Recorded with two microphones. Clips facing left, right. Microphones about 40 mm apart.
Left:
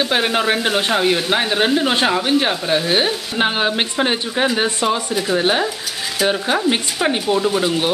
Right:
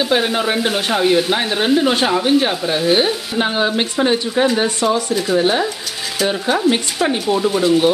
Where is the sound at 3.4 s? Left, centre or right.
Left.